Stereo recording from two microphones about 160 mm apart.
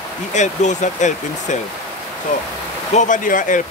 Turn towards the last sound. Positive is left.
turn(degrees=55)  # may be behind; listen again after turning